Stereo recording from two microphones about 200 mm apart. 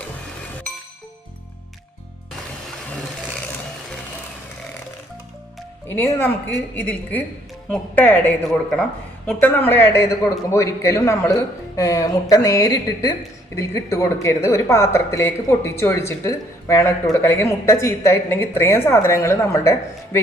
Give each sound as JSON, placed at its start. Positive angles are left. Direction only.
{"t": 5.9, "sound": "a woman's voice", "side_deg": 10}